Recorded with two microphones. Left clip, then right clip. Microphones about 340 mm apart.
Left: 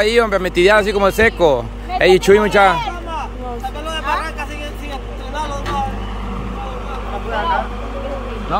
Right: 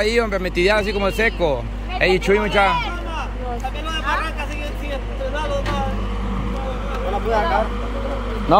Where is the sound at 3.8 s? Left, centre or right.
Centre.